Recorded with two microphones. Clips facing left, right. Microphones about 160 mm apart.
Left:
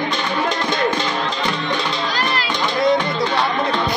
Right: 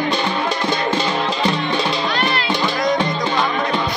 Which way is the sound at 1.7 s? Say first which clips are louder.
Right 2 dB; 25° right (ahead or behind).